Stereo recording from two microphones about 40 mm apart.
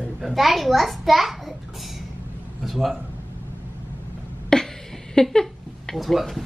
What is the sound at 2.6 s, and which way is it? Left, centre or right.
Speech, centre.